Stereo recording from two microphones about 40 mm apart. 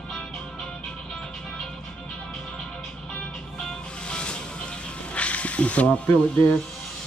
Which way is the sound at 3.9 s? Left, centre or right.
Left.